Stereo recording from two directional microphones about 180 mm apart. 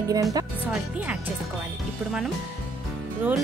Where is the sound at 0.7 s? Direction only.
10° right (ahead or behind).